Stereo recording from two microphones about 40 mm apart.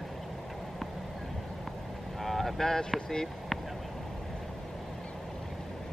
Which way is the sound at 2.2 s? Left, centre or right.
Centre.